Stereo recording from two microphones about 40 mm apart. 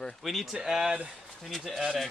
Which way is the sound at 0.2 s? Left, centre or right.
Centre.